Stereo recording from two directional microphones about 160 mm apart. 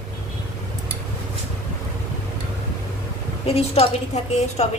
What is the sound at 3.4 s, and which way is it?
A woman's voice, 40° left (ahead or behind).